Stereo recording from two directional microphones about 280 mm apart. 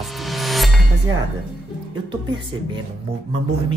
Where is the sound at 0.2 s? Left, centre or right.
Centre.